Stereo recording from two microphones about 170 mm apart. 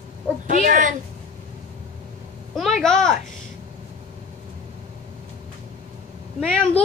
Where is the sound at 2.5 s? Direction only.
Centre (ahead or behind).